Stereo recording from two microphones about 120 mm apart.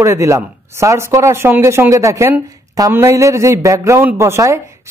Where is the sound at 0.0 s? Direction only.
25° right (ahead or behind).